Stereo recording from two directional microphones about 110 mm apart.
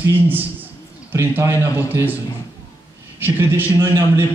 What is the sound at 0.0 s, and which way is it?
A man's voice, 20° right (ahead or behind).